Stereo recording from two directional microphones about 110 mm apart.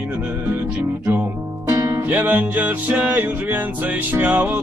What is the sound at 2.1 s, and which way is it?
Music, 15° right (ahead or behind).